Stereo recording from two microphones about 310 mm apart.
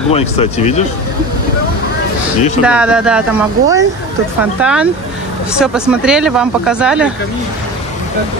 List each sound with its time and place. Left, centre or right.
0.1 s speech: centre
2.6 s speech: centre